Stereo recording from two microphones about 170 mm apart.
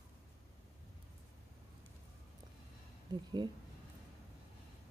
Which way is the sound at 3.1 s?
25° right (ahead or behind).